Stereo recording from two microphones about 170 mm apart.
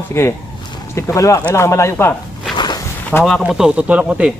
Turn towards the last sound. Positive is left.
turn(degrees=-5)  # may be behind; listen again after turning